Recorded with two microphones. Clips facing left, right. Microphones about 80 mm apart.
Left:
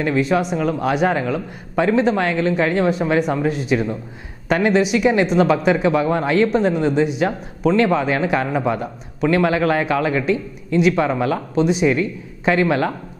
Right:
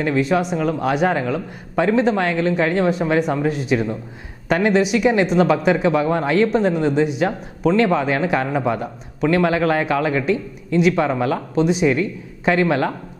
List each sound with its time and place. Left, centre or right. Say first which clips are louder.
0.0 s speech: even; centre